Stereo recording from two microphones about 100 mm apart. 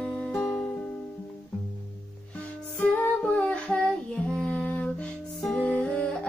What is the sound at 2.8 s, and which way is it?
Music, 15° left (ahead or behind).